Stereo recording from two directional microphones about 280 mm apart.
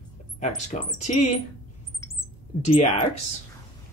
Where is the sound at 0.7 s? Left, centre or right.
Left.